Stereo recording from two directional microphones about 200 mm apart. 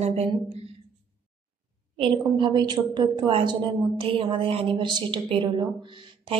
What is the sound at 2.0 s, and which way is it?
A woman's voice, 25° right (ahead or behind).